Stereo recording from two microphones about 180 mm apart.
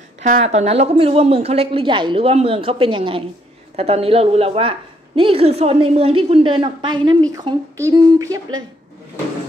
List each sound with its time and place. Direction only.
0.2 s a woman's voice: 40° right (ahead or behind); by 8.5 s 20° right (ahead or behind)